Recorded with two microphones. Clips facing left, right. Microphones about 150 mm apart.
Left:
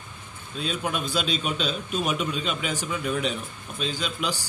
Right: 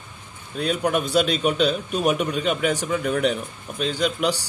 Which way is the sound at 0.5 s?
65° right (ahead or behind).